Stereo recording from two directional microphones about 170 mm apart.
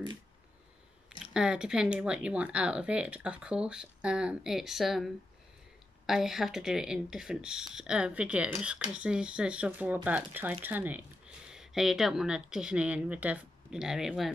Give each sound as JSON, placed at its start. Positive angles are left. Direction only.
{"t": 1.2, "sound": "speech", "side_deg": -5}